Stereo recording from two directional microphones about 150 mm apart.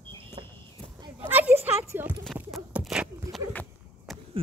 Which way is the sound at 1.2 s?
10° right (ahead or behind).